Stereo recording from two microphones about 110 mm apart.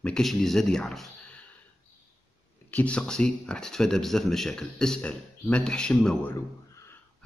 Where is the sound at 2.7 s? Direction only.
10° left (ahead or behind).